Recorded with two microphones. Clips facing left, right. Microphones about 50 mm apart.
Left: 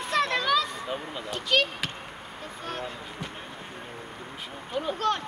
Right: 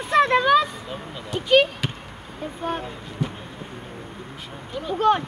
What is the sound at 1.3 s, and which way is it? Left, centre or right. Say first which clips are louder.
Speech: right 8 dB; centre.